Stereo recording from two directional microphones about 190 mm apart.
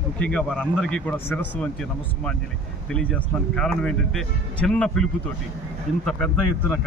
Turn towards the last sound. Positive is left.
turn(degrees=5)  # may be behind; listen again after turning